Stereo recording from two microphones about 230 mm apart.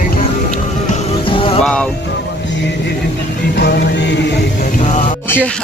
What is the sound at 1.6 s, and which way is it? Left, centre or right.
Music, centre.